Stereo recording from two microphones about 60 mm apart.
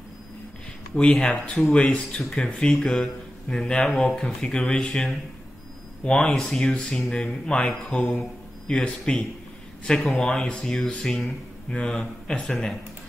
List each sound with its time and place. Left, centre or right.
1.2 s speech: centre